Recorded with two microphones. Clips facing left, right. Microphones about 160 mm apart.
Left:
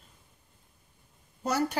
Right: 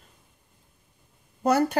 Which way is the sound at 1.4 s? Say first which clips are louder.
Right 7 dB; 55° right (ahead or behind).